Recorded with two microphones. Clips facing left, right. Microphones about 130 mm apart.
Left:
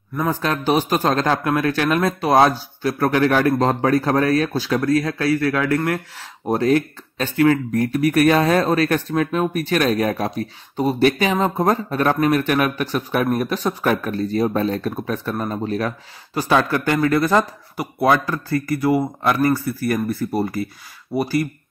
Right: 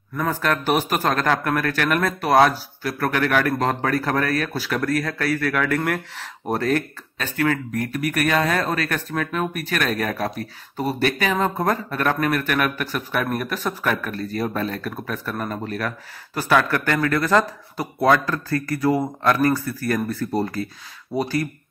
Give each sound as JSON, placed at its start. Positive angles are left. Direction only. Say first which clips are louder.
{"t": 0.2, "sound": "speech", "louder": "left 1 dB", "side_deg": 20}
{"t": 7.2, "sound": "speech", "louder": "left 6 dB", "side_deg": 25}